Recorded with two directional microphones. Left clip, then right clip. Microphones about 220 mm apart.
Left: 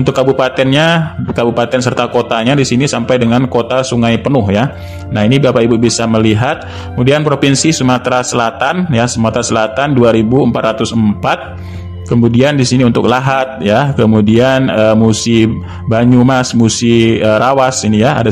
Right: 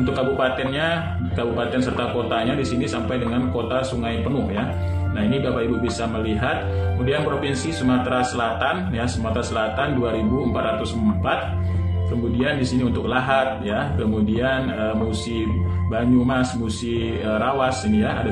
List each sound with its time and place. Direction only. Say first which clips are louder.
0.0 s a man's voice: left 10 dB; 50° left (ahead or behind)
12.4 s a man's voice: left 10 dB; 50° left (ahead or behind)